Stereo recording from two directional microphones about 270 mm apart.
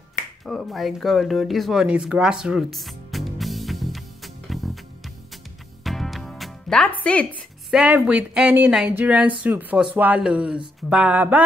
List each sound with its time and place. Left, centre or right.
0.5 s a sound: centre
5.9 s music: centre
7.0 s a woman's voice: centre